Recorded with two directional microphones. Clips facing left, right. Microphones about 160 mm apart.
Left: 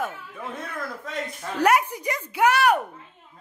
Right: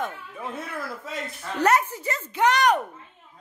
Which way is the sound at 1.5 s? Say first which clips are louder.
Left 1 dB; 10° left (ahead or behind).